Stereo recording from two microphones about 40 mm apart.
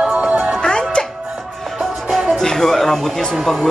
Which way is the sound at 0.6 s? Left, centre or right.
Left.